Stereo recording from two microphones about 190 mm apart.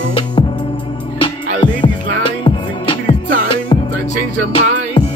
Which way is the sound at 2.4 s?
25° left (ahead or behind).